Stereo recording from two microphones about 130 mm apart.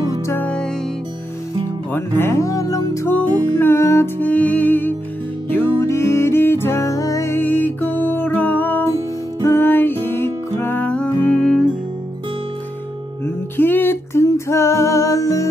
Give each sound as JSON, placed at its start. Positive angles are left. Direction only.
{"t": 0.3, "sound": "music", "side_deg": 10}
{"t": 2.1, "sound": "music", "side_deg": 20}
{"t": 13.2, "sound": "music", "side_deg": 15}